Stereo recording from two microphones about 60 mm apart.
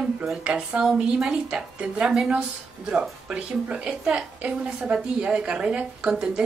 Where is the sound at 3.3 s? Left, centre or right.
Centre.